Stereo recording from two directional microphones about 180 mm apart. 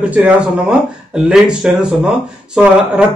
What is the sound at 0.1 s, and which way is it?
A man's voice, 5° right (ahead or behind).